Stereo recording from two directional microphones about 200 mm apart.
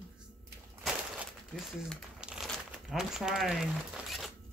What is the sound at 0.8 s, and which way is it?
Crumpling, centre (ahead or behind).